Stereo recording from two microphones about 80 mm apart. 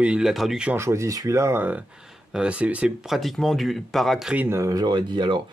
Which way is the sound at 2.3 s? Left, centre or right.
Centre.